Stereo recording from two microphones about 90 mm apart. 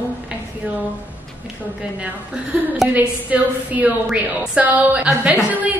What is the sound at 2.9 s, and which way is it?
A woman's voice, 15° right (ahead or behind).